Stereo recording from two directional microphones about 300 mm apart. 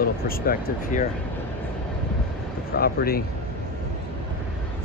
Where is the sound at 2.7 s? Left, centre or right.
Left.